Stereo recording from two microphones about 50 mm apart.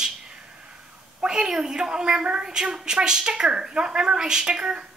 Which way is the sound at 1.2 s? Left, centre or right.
Centre.